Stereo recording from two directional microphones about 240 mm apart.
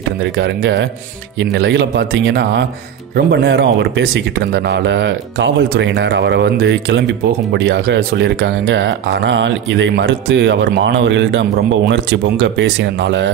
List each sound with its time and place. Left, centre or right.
0.2 s speech: right